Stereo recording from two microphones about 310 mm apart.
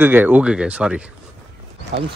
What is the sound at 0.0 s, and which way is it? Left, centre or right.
Speech, centre.